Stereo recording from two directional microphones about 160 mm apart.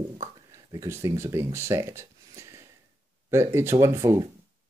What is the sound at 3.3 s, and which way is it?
Speech, 15° right (ahead or behind).